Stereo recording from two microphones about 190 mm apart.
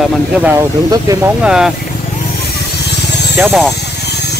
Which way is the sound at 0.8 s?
20° right (ahead or behind).